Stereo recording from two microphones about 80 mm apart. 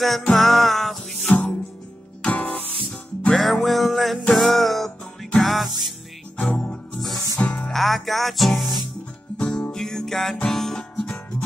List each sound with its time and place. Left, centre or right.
0.0 s music: centre
2.2 s music: centre
3.3 s music: centre
6.3 s music: centre